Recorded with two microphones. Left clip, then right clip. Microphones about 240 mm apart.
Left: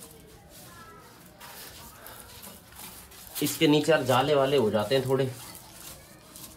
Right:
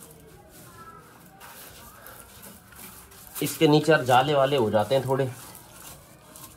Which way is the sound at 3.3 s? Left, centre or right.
Centre.